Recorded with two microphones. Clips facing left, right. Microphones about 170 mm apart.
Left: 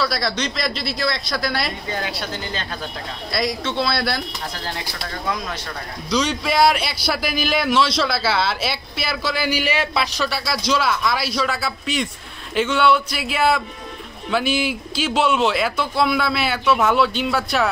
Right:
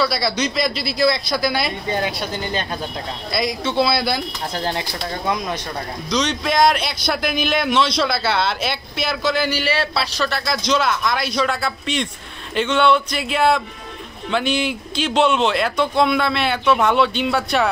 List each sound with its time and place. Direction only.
0.0 s a man's voice: centre (ahead or behind)
1.9 s a woman's voice: 15° right (ahead or behind)
3.3 s a man's voice: centre (ahead or behind)
4.6 s speech: 25° right (ahead or behind)
6.0 s a man's voice: 5° left (ahead or behind)